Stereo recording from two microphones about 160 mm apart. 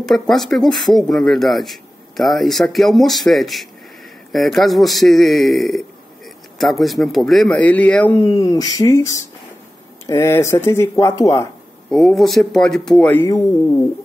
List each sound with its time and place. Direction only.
0.0 s speech: centre (ahead or behind); by 11.4 s 20° left (ahead or behind)
11.9 s speech: 5° left (ahead or behind)